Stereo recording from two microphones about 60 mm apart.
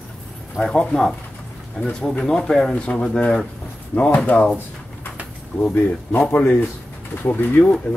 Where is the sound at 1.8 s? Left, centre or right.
Centre.